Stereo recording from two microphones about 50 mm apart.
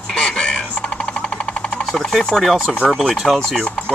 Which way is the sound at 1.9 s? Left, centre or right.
Centre.